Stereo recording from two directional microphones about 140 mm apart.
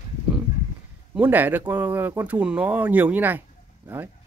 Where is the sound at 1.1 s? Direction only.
10° right (ahead or behind).